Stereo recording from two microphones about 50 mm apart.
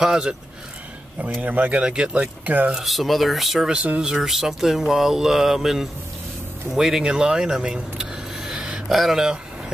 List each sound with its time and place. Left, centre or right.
0.0 s speech: centre
1.4 s speech: right
1.8 s speech: centre
2.4 s speech: right
2.7 s speech: centre
8.5 s a sound: centre
8.9 s speech: centre